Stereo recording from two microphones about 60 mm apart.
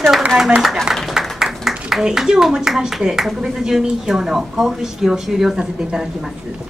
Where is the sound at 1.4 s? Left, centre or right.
Centre.